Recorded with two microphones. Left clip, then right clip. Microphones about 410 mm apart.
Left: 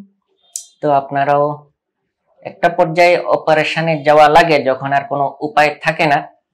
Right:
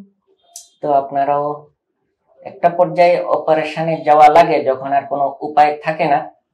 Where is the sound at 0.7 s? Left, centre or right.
Left.